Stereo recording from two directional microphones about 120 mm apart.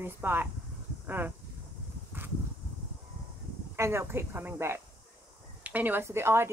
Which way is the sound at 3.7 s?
20° right (ahead or behind).